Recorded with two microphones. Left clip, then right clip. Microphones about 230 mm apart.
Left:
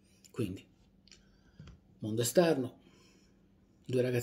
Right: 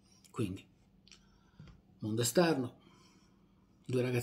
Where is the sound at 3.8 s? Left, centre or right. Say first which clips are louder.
Left 3 dB; centre.